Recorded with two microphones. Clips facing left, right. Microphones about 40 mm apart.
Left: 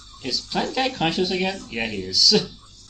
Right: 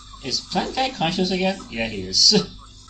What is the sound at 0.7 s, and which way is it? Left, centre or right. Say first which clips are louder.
Speech: left 1 dB; centre.